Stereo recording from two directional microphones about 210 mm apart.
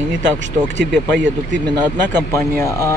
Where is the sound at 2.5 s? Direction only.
15° left (ahead or behind).